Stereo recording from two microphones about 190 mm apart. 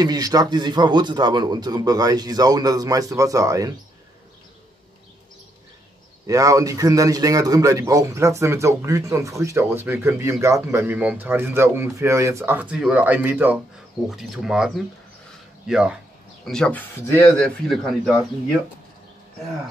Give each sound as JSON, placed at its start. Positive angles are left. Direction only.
{"t": 0.0, "sound": "a man's voice", "side_deg": -20}
{"t": 6.2, "sound": "a man's voice", "side_deg": -15}